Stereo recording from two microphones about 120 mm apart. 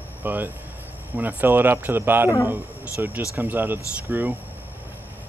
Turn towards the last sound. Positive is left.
turn(degrees=-15)  # may be behind; listen again after turning